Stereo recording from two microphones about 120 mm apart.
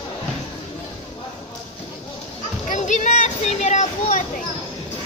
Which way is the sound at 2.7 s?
90° left.